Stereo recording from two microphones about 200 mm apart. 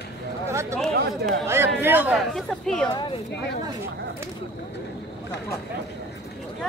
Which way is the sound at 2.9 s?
20° left (ahead or behind).